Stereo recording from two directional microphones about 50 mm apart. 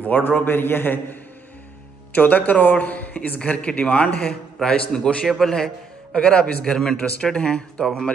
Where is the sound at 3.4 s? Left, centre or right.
Left.